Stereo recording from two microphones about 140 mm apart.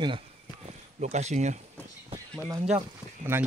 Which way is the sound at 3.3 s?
15° right (ahead or behind).